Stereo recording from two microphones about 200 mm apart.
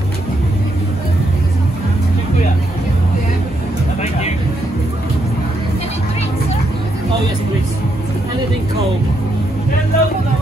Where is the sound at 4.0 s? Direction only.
30° left (ahead or behind).